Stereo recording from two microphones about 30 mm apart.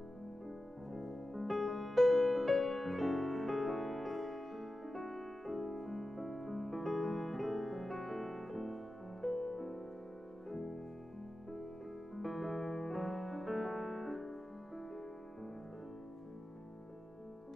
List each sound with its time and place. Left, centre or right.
0.9 s music: centre
12.2 s music: centre